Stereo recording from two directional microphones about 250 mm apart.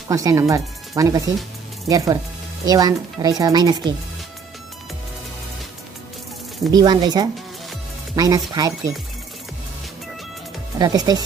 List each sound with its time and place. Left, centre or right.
0.1 s speech: centre
6.7 s speech: centre
10.8 s speech: centre